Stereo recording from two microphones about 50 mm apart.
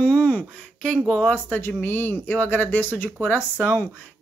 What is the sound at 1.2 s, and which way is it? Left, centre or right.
A woman's voice, left.